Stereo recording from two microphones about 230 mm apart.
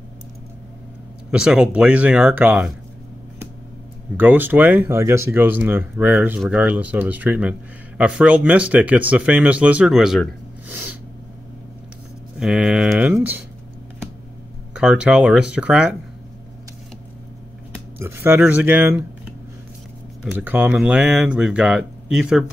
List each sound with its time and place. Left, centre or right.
1.3 s speech: centre
4.2 s speech: centre
12.4 s speech: centre
14.7 s speech: centre
17.9 s speech: centre
20.2 s speech: centre